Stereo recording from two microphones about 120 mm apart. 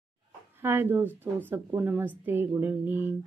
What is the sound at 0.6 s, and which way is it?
A woman's voice, 20° right (ahead or behind).